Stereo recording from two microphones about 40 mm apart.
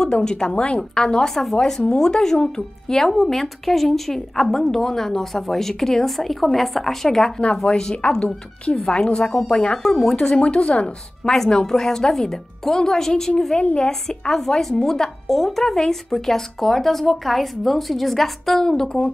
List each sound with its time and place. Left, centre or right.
0.0 s a woman's voice: centre
7.6 s a woman's voice: centre
11.3 s a woman's voice: centre